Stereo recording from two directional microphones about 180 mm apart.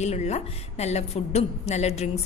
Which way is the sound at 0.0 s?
40° left (ahead or behind).